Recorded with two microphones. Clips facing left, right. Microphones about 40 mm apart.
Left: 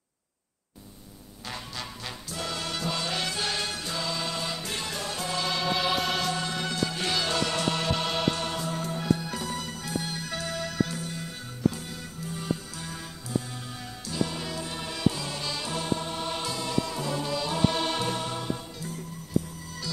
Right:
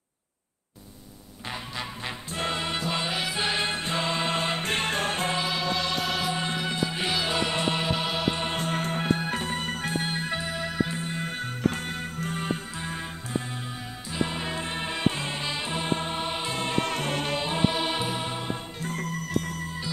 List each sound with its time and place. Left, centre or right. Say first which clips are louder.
1.5 s music: right 3 dB; right
5.4 s music: even; centre
6.2 s music: right 1 dB; right
8.5 s music: right 3 dB; right
10.4 s music: right 1 dB; right
11.0 s music: right 5 dB; right
16.5 s music: right 3 dB; right
17.4 s music: right 1 dB; right
17.6 s music: left 1 dB; centre
18.8 s music: right 6 dB; right